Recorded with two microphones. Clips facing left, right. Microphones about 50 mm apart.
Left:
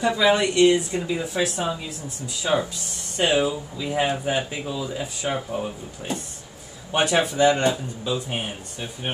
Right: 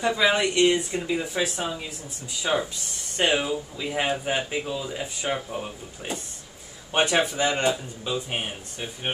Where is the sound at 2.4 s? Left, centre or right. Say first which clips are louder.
Left 2 dB; centre.